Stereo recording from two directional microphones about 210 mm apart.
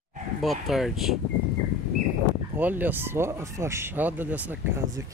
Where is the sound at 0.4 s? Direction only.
Centre (ahead or behind).